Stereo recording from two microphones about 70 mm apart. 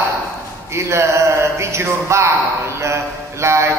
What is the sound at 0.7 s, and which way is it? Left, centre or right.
A man's voice, right.